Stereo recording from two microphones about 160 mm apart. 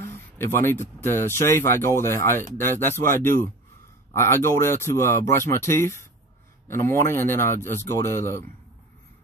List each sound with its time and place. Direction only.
0.0 s speech: 15° left (ahead or behind)
4.1 s speech: 15° left (ahead or behind)